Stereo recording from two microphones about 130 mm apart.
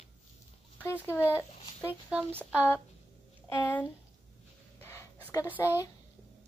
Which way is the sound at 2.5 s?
15° left (ahead or behind).